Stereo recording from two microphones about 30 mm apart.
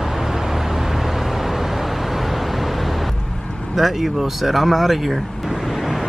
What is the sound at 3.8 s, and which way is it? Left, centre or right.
Speech, centre.